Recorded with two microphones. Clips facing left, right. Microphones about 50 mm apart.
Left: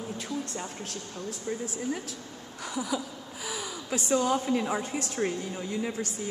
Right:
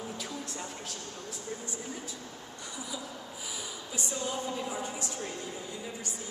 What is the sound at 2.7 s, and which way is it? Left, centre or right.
A woman's voice, left.